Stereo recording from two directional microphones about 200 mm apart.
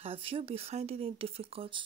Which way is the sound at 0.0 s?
30° right (ahead or behind).